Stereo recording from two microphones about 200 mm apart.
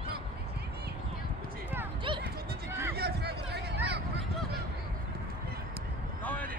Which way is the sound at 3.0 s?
55° right (ahead or behind).